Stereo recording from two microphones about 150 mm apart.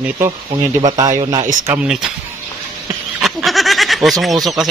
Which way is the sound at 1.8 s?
5° right (ahead or behind).